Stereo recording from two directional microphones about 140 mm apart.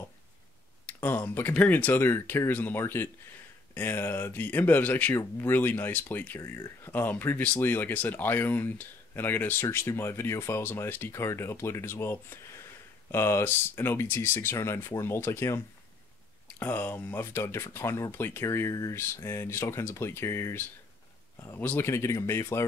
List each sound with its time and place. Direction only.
0.8 s speech: 15° left (ahead or behind)